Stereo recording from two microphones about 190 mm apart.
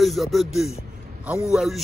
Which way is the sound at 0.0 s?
Centre (ahead or behind).